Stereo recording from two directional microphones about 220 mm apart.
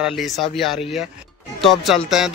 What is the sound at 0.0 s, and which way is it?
Speech, centre (ahead or behind).